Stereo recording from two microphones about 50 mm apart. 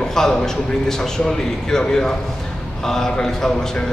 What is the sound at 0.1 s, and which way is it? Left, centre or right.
A man's voice, centre.